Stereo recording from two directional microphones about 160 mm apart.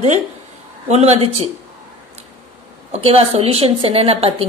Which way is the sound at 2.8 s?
35° right (ahead or behind).